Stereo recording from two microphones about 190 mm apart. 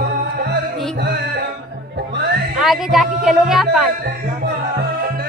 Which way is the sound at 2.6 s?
Centre (ahead or behind).